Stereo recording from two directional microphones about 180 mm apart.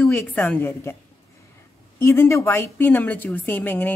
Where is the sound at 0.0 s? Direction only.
10° left (ahead or behind).